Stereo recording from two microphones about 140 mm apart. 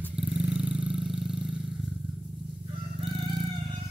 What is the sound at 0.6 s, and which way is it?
Vehicle, 10° right (ahead or behind).